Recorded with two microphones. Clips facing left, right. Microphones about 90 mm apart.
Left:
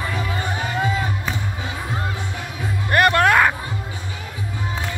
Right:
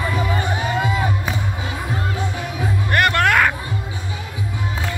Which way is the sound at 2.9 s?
25° left (ahead or behind).